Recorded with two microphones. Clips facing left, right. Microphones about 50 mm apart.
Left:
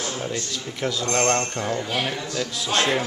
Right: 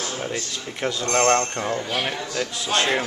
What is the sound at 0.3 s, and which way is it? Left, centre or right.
Speech, centre.